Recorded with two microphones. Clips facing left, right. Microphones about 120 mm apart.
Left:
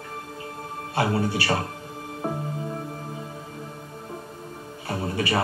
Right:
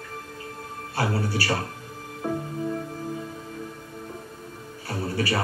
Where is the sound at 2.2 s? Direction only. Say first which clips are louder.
Right 1 dB; 40° left (ahead or behind).